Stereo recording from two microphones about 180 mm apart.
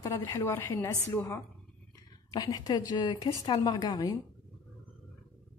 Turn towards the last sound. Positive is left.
turn(degrees=20)  # may be behind; listen again after turning